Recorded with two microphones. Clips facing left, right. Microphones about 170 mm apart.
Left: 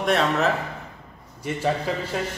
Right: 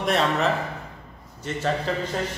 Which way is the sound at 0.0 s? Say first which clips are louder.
Left 1 dB; centre (ahead or behind).